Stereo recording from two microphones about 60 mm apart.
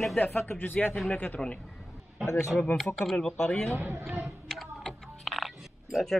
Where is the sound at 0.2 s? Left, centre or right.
Left.